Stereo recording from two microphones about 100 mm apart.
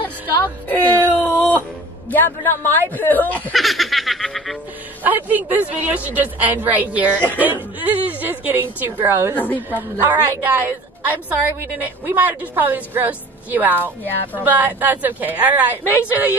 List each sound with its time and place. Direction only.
0.4 s whimper: 20° left (ahead or behind)
2.0 s speech: 20° left (ahead or behind)
3.5 s snicker: centre (ahead or behind)
5.0 s a woman's voice: 15° right (ahead or behind)
9.3 s speech: 15° left (ahead or behind)
10.3 s a woman's voice: 20° right (ahead or behind)
14.0 s speech: 15° left (ahead or behind)
14.4 s a woman's voice: 20° right (ahead or behind)